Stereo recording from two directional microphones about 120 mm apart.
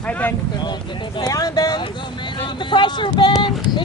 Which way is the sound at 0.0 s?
15° left (ahead or behind).